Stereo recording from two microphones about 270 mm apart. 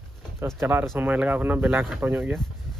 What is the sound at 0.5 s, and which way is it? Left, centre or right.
Speech, centre.